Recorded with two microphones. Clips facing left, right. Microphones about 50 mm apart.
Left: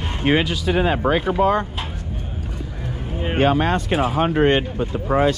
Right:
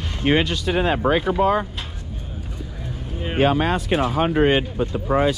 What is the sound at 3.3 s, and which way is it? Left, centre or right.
Speech, centre.